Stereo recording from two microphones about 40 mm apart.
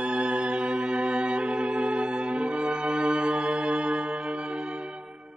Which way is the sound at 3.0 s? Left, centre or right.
Right.